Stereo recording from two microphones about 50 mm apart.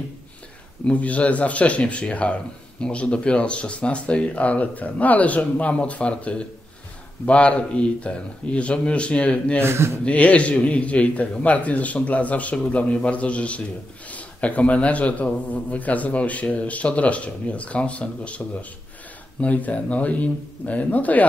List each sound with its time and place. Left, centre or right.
0.8 s a man's voice: left
9.6 s speech: right
10.0 s a man's voice: left